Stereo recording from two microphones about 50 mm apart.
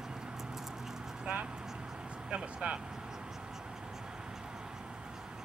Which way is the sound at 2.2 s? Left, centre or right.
Centre.